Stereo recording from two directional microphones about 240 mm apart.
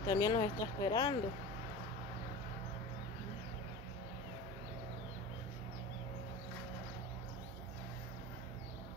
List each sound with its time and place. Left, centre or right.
0.0 s speech: centre